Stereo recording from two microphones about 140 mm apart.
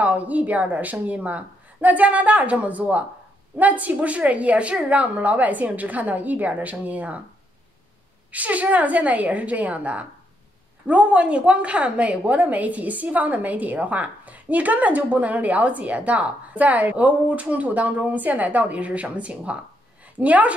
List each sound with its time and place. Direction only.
0.0 s a woman's voice: 10° right (ahead or behind)
8.3 s a woman's voice: 10° right (ahead or behind)